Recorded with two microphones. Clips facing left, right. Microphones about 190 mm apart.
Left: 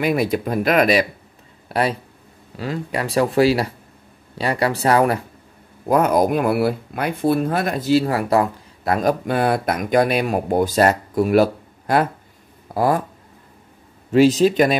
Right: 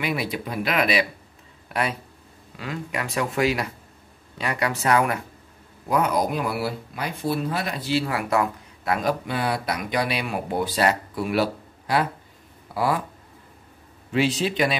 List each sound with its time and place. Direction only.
0.0 s speech: 45° left (ahead or behind)
5.9 s speech: 50° left (ahead or behind)
14.1 s speech: 40° left (ahead or behind)